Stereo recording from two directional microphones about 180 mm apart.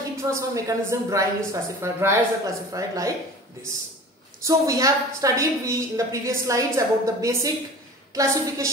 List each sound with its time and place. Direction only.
0.2 s a woman's voice: 15° right (ahead or behind)
4.4 s a woman's voice: 15° right (ahead or behind)